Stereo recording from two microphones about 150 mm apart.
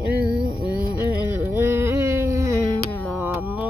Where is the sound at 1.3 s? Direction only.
15° right (ahead or behind).